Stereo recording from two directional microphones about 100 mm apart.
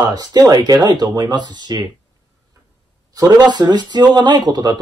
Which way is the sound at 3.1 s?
45° right (ahead or behind).